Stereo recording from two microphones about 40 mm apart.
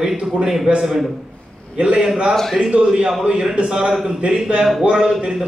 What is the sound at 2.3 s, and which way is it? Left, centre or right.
Speech, centre.